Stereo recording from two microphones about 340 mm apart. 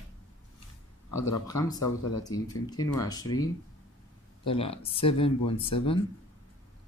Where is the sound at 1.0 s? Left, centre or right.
Left.